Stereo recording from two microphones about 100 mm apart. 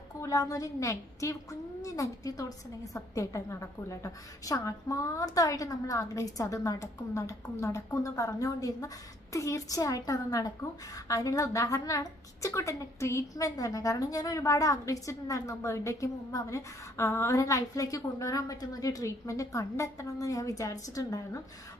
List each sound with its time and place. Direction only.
0.2 s a woman's voice: 35° left (ahead or behind)